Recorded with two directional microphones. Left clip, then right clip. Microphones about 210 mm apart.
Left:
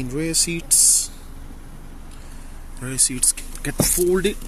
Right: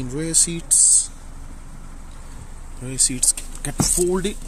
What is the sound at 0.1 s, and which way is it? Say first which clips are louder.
Speech: even; 10° right (ahead or behind).